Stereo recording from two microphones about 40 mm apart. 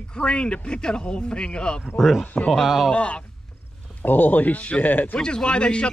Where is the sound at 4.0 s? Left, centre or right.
Left.